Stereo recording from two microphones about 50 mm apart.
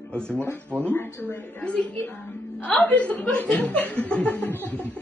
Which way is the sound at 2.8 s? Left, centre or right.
Left.